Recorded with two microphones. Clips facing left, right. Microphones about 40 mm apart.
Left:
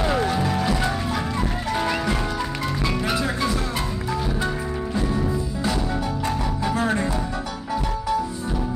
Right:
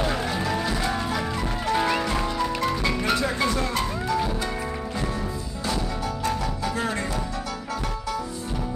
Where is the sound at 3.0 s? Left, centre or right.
Centre.